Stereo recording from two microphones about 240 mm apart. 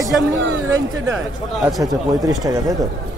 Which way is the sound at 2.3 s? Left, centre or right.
Centre.